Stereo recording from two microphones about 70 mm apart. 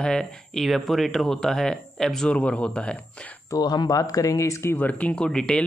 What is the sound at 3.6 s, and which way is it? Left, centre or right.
Speech, left.